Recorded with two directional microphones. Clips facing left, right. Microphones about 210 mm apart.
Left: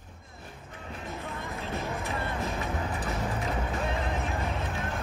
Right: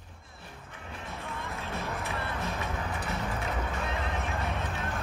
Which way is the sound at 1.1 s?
15° left (ahead or behind).